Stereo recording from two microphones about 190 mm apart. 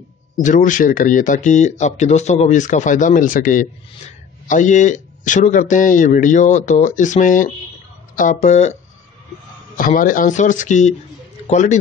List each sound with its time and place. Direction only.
0.4 s speech: 40° left (ahead or behind)
9.8 s speech: 45° left (ahead or behind)